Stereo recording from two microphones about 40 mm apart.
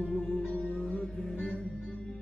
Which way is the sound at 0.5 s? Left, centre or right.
Left.